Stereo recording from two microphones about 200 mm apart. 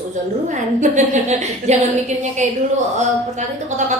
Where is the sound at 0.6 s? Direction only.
35° right (ahead or behind).